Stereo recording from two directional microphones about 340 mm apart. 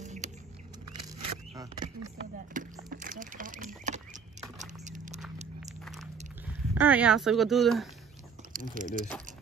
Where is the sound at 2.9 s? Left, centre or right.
Right.